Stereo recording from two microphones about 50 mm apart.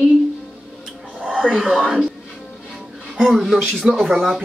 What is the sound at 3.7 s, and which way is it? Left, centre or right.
Speech, centre.